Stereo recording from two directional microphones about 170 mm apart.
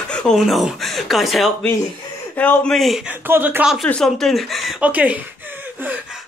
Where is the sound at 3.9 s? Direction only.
5° left (ahead or behind).